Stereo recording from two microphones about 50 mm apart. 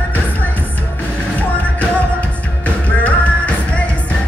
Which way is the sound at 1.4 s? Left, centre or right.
Left.